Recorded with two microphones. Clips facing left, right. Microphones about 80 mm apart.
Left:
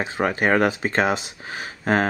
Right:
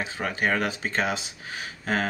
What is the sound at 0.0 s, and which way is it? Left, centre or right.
Speech, left.